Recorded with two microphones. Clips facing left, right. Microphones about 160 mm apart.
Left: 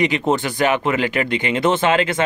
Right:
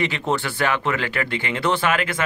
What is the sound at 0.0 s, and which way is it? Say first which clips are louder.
Speech: left 5 dB; 15° left (ahead or behind).